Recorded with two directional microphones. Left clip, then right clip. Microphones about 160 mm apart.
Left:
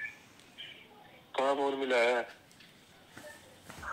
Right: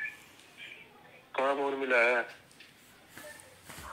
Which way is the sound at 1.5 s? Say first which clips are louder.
Right 3 dB; 20° left (ahead or behind).